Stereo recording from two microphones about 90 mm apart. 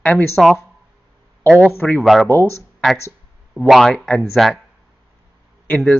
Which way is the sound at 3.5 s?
10° right (ahead or behind).